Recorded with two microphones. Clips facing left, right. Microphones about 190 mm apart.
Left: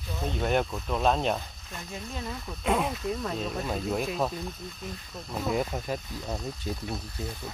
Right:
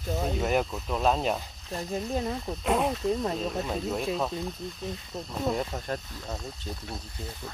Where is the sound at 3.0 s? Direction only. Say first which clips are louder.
Right 4 dB; 30° right (ahead or behind).